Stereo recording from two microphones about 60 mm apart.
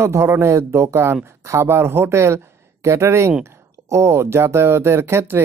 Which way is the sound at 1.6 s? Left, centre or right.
Right.